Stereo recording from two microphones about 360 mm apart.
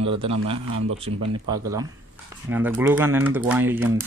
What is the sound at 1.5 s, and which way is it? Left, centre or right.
Speech, centre.